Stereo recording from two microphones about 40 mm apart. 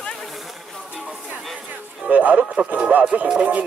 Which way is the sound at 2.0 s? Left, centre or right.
Right.